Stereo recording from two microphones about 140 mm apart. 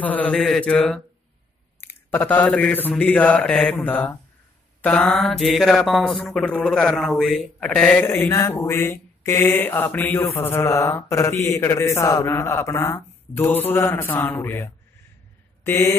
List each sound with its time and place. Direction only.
0.0 s mantra: 10° left (ahead or behind)
1.8 s speech: 15° left (ahead or behind)
3.0 s mantra: 10° left (ahead or behind)
11.1 s a sound: 20° left (ahead or behind)
11.4 s mantra: 20° left (ahead or behind)